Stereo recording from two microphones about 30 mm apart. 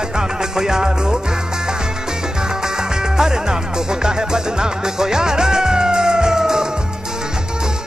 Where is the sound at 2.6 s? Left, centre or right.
Right.